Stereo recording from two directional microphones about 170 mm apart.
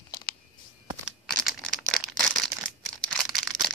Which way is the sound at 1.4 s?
Centre (ahead or behind).